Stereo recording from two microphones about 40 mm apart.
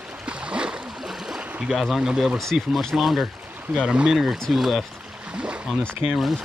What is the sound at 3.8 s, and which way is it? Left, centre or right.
Speech, right.